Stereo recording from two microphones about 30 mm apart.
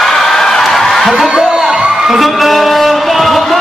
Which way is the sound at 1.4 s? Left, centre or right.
Centre.